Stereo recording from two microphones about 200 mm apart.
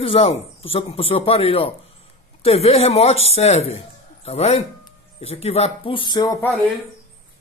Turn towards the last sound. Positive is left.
turn(degrees=15)  # may be behind; listen again after turning